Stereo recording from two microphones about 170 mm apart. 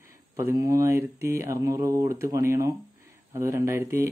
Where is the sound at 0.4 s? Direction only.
15° right (ahead or behind).